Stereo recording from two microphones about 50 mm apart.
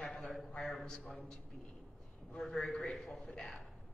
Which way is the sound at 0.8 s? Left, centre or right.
Centre.